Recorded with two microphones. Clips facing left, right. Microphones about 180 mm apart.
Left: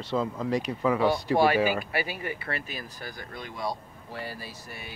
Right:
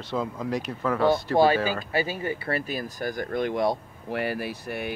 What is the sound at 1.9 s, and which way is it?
Speech, 25° right (ahead or behind).